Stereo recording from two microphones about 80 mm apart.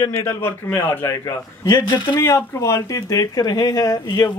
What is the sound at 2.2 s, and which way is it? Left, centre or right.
Speech, left.